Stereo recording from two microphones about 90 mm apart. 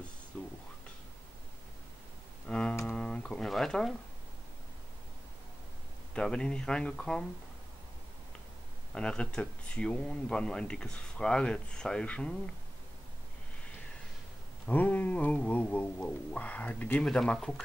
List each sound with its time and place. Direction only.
0.3 s a sound: 15° left (ahead or behind)
2.4 s double bass: 10° left (ahead or behind)
2.9 s a sound: 10° left (ahead or behind)
6.1 s speech: 5° left (ahead or behind)
8.9 s speech: 10° left (ahead or behind)
14.7 s speech: 20° left (ahead or behind)
17.1 s speech: 5° left (ahead or behind)